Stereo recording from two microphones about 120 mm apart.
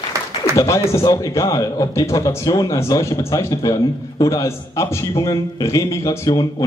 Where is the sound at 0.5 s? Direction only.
25° left (ahead or behind).